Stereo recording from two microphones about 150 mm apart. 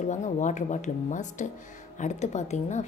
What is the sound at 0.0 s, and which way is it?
Speech, 55° left (ahead or behind).